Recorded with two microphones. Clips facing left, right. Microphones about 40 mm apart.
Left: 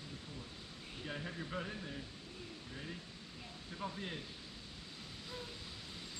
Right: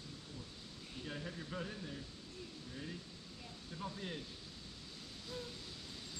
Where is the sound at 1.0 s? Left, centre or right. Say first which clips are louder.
Left 2 dB; centre.